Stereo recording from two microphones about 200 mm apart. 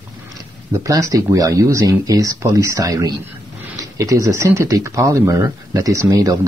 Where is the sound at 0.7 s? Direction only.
15° right (ahead or behind).